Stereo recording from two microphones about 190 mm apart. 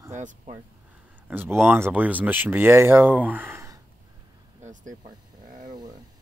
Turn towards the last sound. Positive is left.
turn(degrees=-40)  # may be behind; listen again after turning